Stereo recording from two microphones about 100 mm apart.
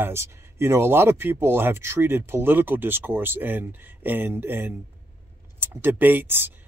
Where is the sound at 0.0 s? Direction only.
25° right (ahead or behind).